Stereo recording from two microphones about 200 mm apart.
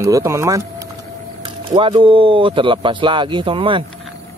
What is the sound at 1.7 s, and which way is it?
Speech, 25° right (ahead or behind).